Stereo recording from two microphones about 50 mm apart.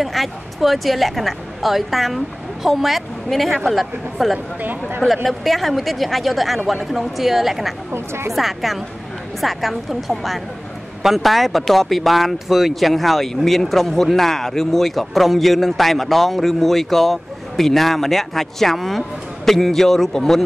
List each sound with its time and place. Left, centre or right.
0.0 s speech: centre
4.6 s speech: right
5.0 s speech: centre
7.9 s a woman's voice: right
8.3 s speech: centre